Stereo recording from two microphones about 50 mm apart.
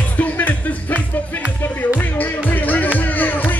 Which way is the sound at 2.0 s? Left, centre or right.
Left.